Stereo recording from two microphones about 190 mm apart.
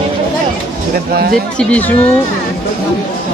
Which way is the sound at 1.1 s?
50° right (ahead or behind).